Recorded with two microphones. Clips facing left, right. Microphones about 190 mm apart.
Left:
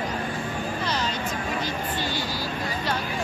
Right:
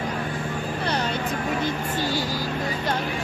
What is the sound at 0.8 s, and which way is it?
Vehicle, 60° right (ahead or behind).